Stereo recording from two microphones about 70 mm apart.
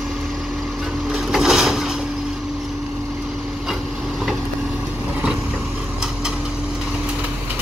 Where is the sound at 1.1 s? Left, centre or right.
Centre.